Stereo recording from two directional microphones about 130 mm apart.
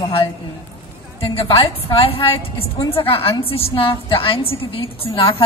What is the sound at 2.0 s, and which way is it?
A woman's voice, 45° left (ahead or behind).